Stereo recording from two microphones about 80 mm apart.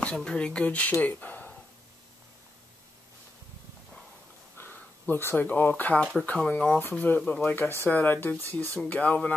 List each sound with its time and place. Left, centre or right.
0.0 s speech: centre
4.6 s speech: left
6.7 s speech: left